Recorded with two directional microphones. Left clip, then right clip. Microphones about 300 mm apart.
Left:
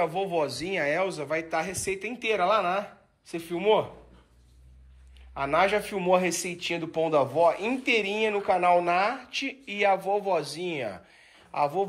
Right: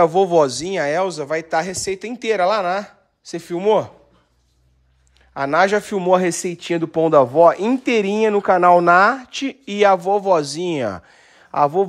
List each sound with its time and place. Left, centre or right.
0.1 s speech: right
5.3 s speech: right